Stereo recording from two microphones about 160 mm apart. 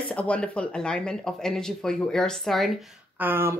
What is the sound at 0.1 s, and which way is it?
Speech, 10° left (ahead or behind).